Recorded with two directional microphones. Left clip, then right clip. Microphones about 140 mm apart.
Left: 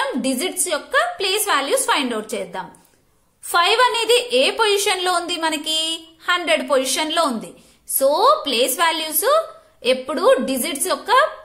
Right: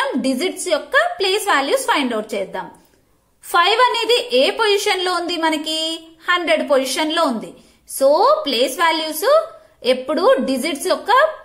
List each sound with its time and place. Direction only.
0.0 s a woman's voice: 20° left (ahead or behind)